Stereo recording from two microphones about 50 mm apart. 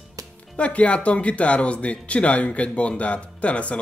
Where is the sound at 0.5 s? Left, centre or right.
Left.